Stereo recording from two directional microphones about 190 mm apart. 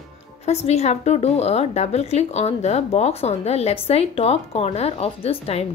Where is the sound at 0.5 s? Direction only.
35° left (ahead or behind).